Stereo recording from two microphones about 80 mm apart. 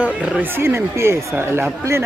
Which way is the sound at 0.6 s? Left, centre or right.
Right.